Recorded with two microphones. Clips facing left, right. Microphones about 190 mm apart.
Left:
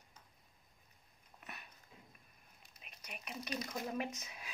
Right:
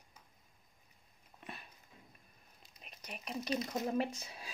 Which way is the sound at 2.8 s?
35° right (ahead or behind).